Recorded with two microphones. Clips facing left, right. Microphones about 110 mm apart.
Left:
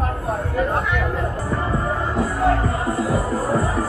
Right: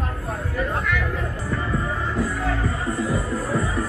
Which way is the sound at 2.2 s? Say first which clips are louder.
Left 7 dB; 40° left (ahead or behind).